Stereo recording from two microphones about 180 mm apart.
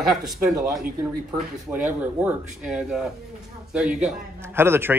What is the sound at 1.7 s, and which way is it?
A man's voice, 10° right (ahead or behind).